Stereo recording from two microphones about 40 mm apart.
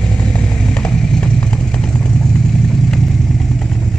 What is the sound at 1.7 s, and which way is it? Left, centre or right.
Vehicle, left.